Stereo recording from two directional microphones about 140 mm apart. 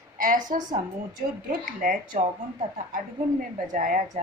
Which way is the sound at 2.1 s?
75° right (ahead or behind).